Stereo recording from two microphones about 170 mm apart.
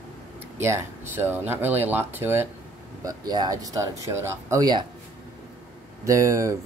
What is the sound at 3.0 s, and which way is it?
Speech, 25° right (ahead or behind).